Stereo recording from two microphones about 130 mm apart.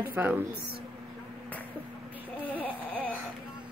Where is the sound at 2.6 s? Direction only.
10° left (ahead or behind).